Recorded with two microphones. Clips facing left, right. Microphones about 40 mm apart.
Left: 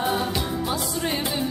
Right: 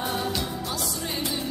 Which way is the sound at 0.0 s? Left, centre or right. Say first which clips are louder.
Left 4 dB; centre.